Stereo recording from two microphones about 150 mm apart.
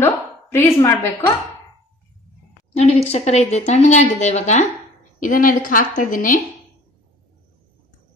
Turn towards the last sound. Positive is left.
turn(degrees=65)  # may be behind; listen again after turning